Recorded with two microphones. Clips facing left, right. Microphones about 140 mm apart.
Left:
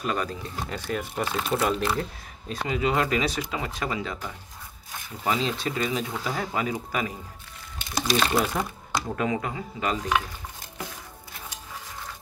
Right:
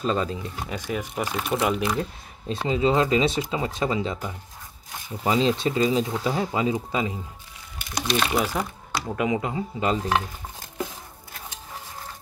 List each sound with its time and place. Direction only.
0.0 s speech: 25° right (ahead or behind)
0.7 s speech: 10° right (ahead or behind)
2.5 s speech: 25° right (ahead or behind)
7.9 s speech: 5° left (ahead or behind); by 10.2 s 30° right (ahead or behind)